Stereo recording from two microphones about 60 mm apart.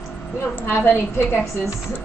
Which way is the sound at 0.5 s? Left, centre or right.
Left.